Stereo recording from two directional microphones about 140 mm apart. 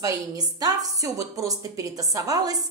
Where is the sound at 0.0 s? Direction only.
25° right (ahead or behind).